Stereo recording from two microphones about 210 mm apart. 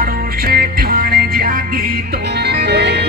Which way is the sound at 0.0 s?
45° right (ahead or behind).